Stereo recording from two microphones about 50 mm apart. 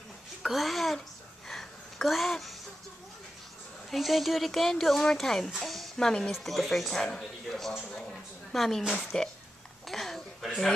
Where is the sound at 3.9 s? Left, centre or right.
Centre.